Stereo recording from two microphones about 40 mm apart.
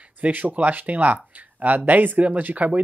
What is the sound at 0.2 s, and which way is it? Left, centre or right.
Speech, right.